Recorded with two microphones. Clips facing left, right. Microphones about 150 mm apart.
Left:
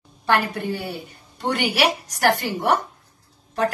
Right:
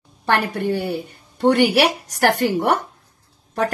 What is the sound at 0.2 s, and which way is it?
A woman's voice, 60° right (ahead or behind).